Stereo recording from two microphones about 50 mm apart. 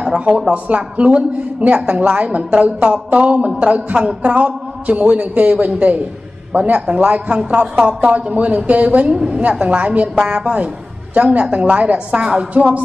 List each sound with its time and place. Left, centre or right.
0.5 s a woman's voice: right